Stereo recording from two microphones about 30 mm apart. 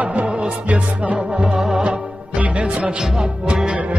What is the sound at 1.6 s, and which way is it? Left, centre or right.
Music, right.